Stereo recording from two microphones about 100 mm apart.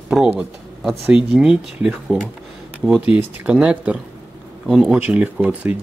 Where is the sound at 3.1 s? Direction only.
15° right (ahead or behind).